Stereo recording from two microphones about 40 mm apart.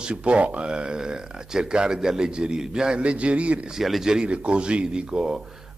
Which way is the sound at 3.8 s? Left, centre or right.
Centre.